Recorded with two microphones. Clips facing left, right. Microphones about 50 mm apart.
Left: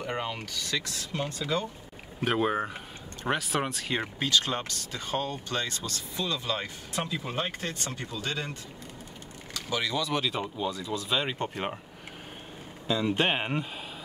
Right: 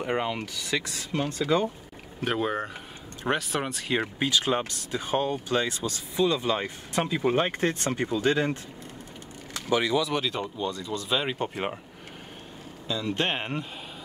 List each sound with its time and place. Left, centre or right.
0.0 s speech: centre
2.2 s speech: centre; by 8.5 s right
9.5 s a sound: right
9.9 s speech: centre
12.8 s speech: centre